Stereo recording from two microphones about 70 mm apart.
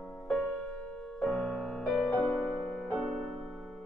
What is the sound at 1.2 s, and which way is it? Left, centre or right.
Music, centre.